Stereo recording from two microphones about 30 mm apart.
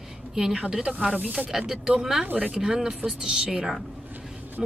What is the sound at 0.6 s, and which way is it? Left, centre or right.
A woman's voice, centre.